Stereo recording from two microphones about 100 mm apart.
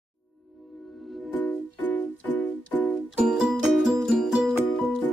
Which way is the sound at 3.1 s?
5° right (ahead or behind).